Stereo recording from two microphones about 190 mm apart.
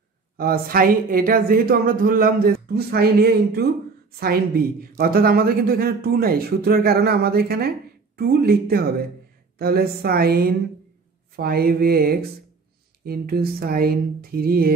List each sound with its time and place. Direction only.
0.4 s speech: 50° right (ahead or behind)